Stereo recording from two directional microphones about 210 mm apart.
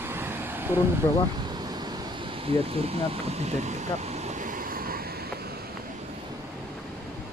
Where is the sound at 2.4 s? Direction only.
30° right (ahead or behind); by 4.9 s 45° right (ahead or behind).